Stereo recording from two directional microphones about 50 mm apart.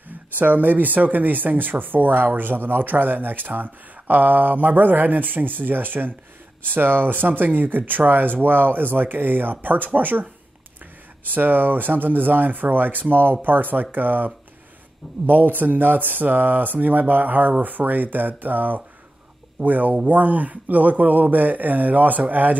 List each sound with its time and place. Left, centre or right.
0.4 s speech: right